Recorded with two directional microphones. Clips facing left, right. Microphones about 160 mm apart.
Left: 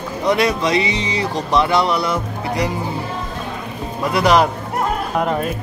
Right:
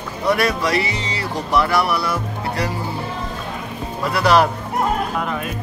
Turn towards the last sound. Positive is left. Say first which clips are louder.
# left 5 dB
turn(degrees=45)  # may be behind; listen again after turning